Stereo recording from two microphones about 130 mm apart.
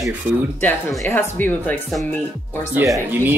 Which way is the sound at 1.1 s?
15° left (ahead or behind).